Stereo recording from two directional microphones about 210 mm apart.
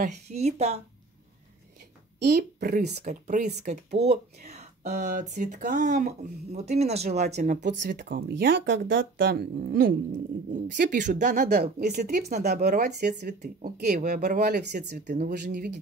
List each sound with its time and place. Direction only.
0.0 s speech: 30° right (ahead or behind)
2.2 s speech: 50° right (ahead or behind)
3.0 s speech: 35° right (ahead or behind)
10.8 s speech: 35° right (ahead or behind)
11.6 s speech: 50° right (ahead or behind)
15.0 s speech: 40° right (ahead or behind)